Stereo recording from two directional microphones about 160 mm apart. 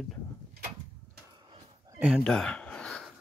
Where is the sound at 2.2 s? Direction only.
5° left (ahead or behind).